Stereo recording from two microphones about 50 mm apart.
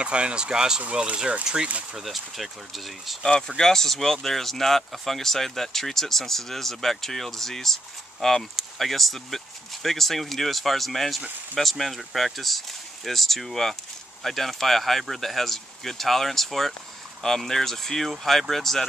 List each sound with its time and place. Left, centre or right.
0.0 s speech: right
2.0 s speech: centre
3.2 s speech: centre